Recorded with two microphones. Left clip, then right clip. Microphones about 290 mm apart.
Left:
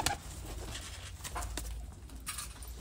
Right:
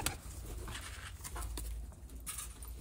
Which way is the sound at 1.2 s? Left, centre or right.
Centre.